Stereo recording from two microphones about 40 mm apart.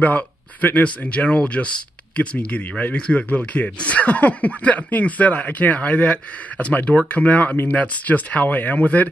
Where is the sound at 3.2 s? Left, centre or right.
Left.